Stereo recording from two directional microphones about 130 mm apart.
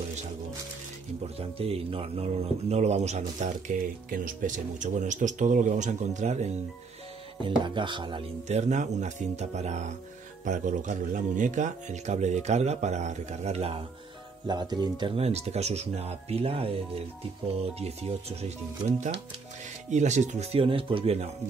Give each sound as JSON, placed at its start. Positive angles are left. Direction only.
{"t": 1.2, "sound": "speech", "side_deg": -50}
{"t": 7.6, "sound": "speech", "side_deg": -40}
{"t": 8.5, "sound": "speech", "side_deg": -60}
{"t": 10.4, "sound": "speech", "side_deg": -75}
{"t": 14.5, "sound": "speech", "side_deg": -30}
{"t": 15.1, "sound": "speech", "side_deg": -55}
{"t": 19.9, "sound": "speech", "side_deg": -65}
{"t": 20.5, "sound": "speech", "side_deg": -45}